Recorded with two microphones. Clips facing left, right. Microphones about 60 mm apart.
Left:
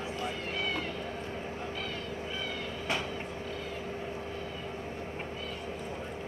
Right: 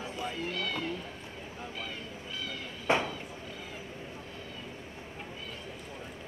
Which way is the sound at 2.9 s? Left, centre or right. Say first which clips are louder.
Right 7 dB; right.